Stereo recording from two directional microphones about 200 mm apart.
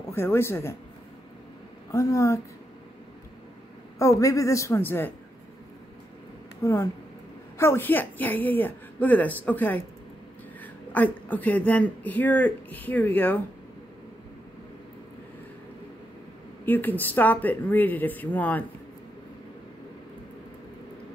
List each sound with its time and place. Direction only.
0.1 s a woman's voice: 10° left (ahead or behind)
1.9 s a woman's voice: 15° left (ahead or behind)
4.0 s a woman's voice: 15° left (ahead or behind)
6.6 s a woman's voice: 15° left (ahead or behind)
16.6 s a woman's voice: 10° left (ahead or behind)